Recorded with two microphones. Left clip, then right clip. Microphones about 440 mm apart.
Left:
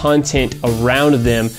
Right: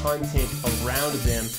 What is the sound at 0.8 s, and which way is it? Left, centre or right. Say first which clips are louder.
Speech: left 15 dB; left.